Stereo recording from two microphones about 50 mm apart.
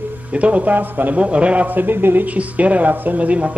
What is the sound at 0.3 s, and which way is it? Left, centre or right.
Speech, right.